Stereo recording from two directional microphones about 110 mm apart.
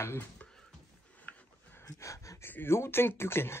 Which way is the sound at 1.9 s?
30° left (ahead or behind).